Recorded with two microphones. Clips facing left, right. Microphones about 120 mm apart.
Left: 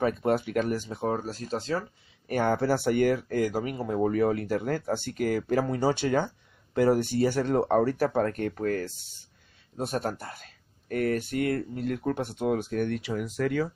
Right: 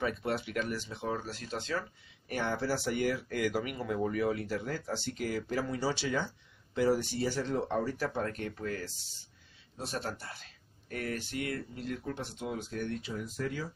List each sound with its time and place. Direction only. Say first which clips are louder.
0.0 s speech: left 8 dB; 45° left (ahead or behind); by 13.7 s 70° left (ahead or behind)